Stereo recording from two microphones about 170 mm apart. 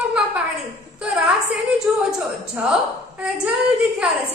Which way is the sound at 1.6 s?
5° right (ahead or behind).